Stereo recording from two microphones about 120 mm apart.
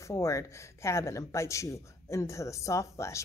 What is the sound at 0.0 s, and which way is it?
Speech, 25° left (ahead or behind).